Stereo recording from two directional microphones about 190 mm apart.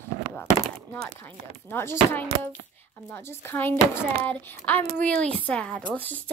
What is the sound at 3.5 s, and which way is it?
Speech, 10° left (ahead or behind).